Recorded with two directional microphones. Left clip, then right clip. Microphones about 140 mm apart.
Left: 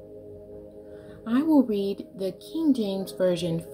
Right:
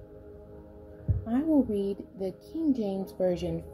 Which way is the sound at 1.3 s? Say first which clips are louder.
Left 4 dB; 15° left (ahead or behind).